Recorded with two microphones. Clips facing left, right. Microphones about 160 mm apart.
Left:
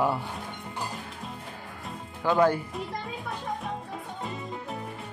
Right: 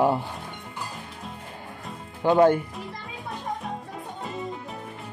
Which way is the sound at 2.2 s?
20° right (ahead or behind).